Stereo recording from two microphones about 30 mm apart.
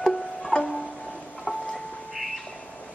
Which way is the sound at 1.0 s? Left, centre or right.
Centre.